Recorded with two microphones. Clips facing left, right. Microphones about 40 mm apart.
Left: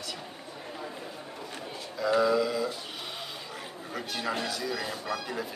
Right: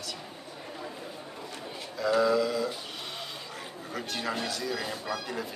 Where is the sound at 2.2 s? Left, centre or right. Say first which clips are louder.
Even; centre.